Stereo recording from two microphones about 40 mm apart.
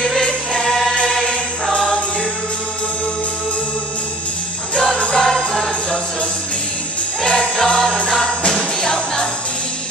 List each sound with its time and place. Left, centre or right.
0.2 s music: centre
4.7 s jingle bell: left
5.1 s jingle bell: centre
7.2 s music: left